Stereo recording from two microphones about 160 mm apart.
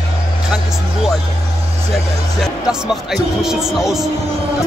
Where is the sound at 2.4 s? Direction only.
5° right (ahead or behind).